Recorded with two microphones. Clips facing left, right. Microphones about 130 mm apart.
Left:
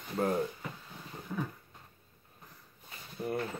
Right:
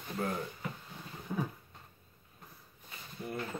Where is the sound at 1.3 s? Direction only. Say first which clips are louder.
Right 1 dB; 15° right (ahead or behind).